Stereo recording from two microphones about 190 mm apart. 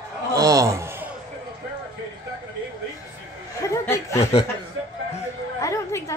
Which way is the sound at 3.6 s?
15° left (ahead or behind).